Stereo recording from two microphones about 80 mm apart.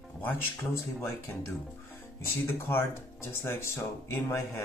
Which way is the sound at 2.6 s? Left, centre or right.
Left.